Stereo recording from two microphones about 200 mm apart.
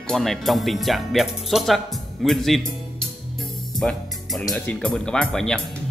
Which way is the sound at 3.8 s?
Centre (ahead or behind).